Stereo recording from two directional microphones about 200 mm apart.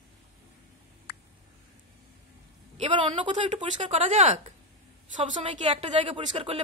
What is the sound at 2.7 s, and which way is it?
A woman's voice, 30° right (ahead or behind).